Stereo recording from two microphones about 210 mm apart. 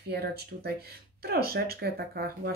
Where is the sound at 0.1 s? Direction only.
50° right (ahead or behind).